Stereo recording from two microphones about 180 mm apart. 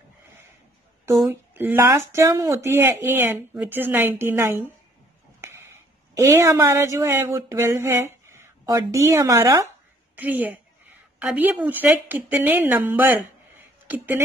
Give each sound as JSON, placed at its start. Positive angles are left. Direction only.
{"t": 1.0, "sound": "a man's voice", "side_deg": -15}